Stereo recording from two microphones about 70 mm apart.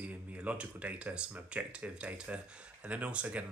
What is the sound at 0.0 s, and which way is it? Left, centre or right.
Speech, right.